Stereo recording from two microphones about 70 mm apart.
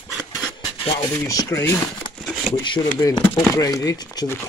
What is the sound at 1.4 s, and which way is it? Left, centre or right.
Speech, left.